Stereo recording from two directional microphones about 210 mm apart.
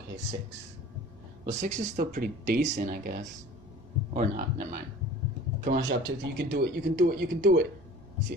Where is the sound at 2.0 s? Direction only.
45° right (ahead or behind).